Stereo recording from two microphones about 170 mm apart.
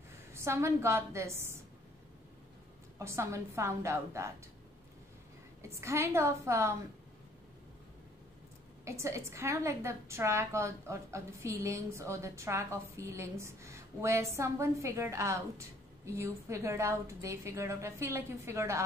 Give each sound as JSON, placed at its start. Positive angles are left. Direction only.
{"t": 0.3, "sound": "a woman's voice", "side_deg": -15}
{"t": 3.0, "sound": "a woman's voice", "side_deg": -15}
{"t": 5.6, "sound": "a woman's voice", "side_deg": -15}
{"t": 8.8, "sound": "a woman's voice", "side_deg": -15}